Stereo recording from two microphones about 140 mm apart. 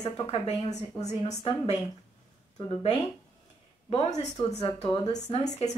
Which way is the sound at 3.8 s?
45° left (ahead or behind).